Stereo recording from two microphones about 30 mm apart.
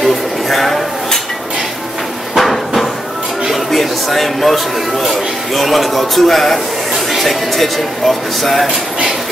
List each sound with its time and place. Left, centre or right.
0.0 s a sound: centre
2.3 s hammer: centre
3.5 s speech: centre